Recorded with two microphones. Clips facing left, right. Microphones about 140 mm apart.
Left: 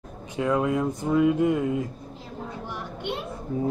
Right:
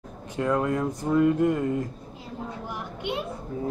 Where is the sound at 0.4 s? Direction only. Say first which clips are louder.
Left 1 dB; centre (ahead or behind).